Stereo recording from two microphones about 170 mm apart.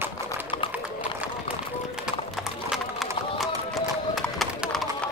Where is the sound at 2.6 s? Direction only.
Centre (ahead or behind).